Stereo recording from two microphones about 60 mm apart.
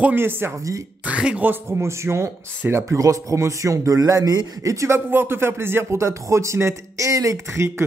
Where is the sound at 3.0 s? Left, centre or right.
Right.